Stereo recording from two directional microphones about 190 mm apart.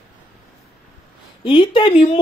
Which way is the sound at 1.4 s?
25° left (ahead or behind).